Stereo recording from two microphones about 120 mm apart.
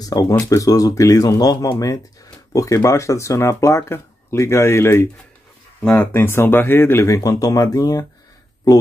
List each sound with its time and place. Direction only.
0.0 s speech: 30° left (ahead or behind)